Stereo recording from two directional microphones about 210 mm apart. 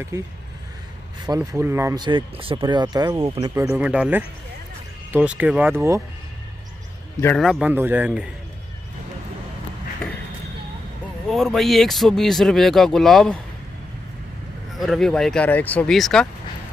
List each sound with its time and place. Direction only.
1.2 s speech: 15° right (ahead or behind)
3.5 s speech: 10° right (ahead or behind)
7.3 s speech: centre (ahead or behind)
11.2 s speech: centre (ahead or behind)
14.8 s speech: centre (ahead or behind)